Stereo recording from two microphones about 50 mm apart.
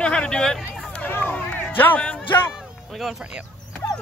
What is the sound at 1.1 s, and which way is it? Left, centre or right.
Speech, left.